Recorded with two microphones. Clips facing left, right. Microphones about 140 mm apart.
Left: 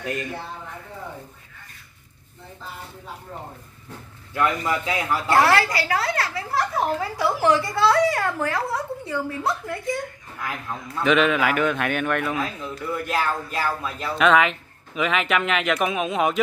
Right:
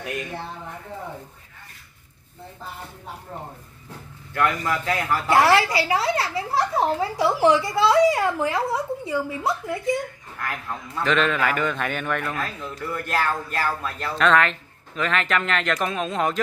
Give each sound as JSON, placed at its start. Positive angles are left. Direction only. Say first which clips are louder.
{"t": 4.3, "sound": "a man's voice", "louder": "even", "side_deg": 15}
{"t": 5.3, "sound": "a woman's voice", "louder": "right 1 dB", "side_deg": -15}
{"t": 6.1, "sound": "speech", "louder": "right 1 dB", "side_deg": -25}
{"t": 7.4, "sound": "a woman's voice", "louder": "right 1 dB", "side_deg": -15}
{"t": 10.4, "sound": "a man's voice", "louder": "even", "side_deg": 5}